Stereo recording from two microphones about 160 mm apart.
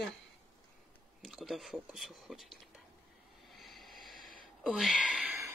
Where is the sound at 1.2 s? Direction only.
Centre (ahead or behind).